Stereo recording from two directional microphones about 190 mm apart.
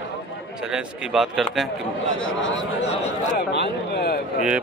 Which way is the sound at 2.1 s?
80° left.